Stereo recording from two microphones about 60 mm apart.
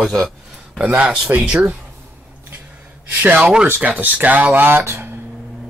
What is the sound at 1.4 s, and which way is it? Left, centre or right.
Speech, right.